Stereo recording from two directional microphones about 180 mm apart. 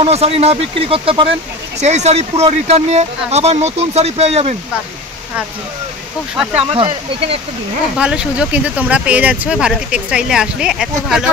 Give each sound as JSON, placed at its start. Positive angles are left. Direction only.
{"t": 0.0, "sound": "speech", "side_deg": -35}
{"t": 6.3, "sound": "speech", "side_deg": -10}
{"t": 6.7, "sound": "speech", "side_deg": -30}
{"t": 8.0, "sound": "speech", "side_deg": -5}